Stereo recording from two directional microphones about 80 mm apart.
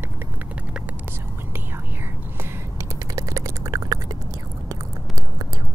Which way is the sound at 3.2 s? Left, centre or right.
Right.